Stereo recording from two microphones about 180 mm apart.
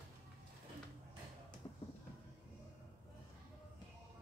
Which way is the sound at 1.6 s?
20° left (ahead or behind).